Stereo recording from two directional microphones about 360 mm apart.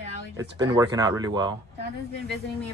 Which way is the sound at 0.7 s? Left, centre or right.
Centre.